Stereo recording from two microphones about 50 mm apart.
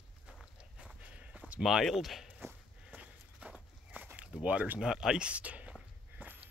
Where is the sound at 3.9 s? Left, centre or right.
Right.